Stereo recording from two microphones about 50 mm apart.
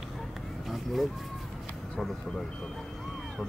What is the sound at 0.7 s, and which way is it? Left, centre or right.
Vehicle, centre.